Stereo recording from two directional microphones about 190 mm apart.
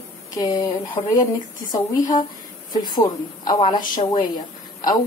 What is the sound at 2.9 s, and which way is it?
Speech, 20° left (ahead or behind).